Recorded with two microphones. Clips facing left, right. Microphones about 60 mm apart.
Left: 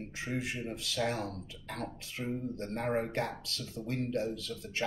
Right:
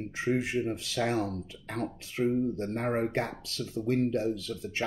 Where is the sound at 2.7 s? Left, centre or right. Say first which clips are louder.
Right 3 dB; right.